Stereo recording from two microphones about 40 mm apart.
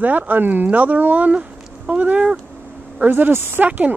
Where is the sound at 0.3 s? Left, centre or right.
Right.